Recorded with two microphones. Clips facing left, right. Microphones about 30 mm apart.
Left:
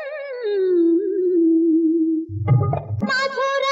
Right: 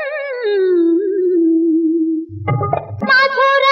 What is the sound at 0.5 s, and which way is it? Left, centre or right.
Dog, right.